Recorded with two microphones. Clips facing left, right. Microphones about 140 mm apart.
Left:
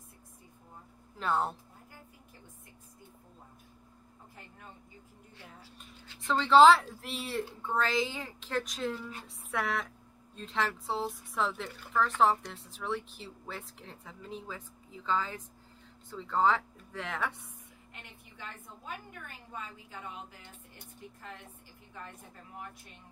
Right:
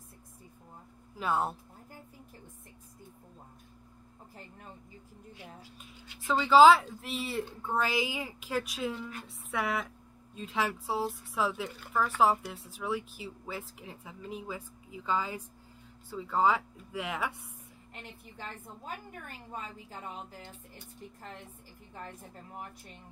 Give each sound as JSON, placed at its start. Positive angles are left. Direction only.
{"t": 1.1, "sound": "speech", "side_deg": -5}
{"t": 6.2, "sound": "speech", "side_deg": -5}
{"t": 19.5, "sound": "a woman's voice", "side_deg": -40}